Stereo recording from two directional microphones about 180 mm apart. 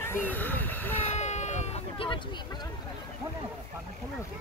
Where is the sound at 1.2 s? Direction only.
40° left (ahead or behind).